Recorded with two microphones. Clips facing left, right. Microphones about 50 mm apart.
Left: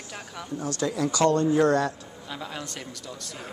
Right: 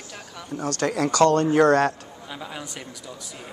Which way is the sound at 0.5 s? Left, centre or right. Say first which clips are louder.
Right 4 dB; right.